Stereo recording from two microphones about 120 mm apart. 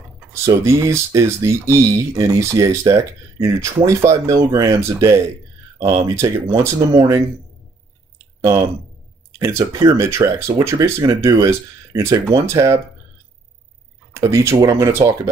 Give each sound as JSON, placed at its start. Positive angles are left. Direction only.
{"t": 0.7, "sound": "speech", "side_deg": -25}
{"t": 8.4, "sound": "speech", "side_deg": -25}
{"t": 14.1, "sound": "speech", "side_deg": -25}